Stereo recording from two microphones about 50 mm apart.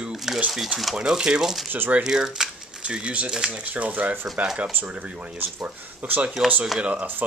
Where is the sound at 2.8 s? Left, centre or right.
Right.